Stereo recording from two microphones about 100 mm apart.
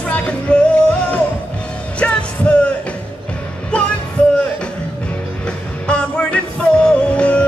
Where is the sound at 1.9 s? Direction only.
15° left (ahead or behind).